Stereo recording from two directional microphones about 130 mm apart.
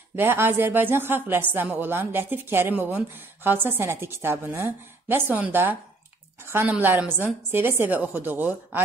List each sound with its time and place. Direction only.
0.1 s speech: 15° right (ahead or behind)